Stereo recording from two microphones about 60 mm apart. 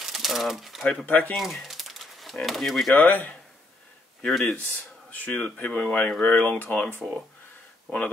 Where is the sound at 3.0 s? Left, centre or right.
Left.